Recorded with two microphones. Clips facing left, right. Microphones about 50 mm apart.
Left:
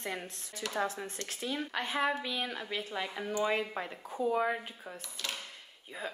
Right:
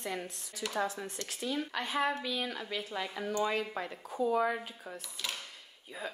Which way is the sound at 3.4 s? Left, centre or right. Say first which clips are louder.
Left 2 dB; left.